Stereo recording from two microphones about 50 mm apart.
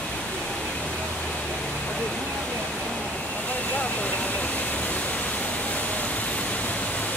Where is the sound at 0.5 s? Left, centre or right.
Left.